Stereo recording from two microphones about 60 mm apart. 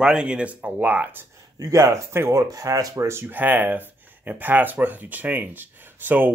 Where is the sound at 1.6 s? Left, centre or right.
Right.